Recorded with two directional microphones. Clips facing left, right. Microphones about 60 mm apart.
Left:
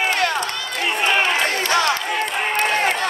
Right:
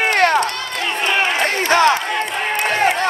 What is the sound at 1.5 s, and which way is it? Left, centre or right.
Crowd, right.